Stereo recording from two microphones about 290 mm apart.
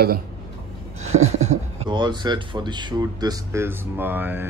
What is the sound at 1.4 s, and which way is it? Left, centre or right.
Speech, centre.